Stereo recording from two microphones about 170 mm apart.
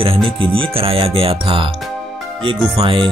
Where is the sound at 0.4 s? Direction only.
30° right (ahead or behind).